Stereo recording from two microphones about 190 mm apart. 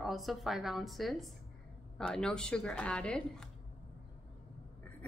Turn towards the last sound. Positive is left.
turn(degrees=5)  # may be behind; listen again after turning